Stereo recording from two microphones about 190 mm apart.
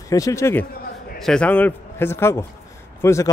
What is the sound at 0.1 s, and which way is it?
Speech, 15° left (ahead or behind).